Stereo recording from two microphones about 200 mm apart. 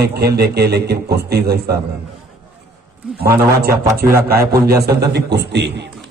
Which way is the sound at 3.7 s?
50° right (ahead or behind).